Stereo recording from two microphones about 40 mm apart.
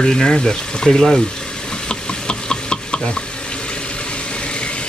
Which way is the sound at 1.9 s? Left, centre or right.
Left.